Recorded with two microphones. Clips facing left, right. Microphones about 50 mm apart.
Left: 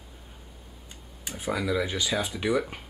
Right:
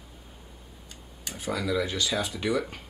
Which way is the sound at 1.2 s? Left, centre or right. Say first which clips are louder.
Left 1 dB; centre.